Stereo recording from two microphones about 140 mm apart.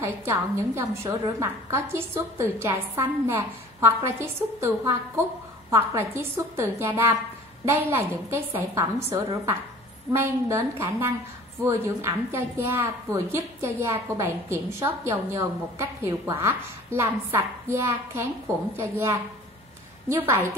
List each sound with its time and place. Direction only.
0.0 s a woman's voice: 20° right (ahead or behind)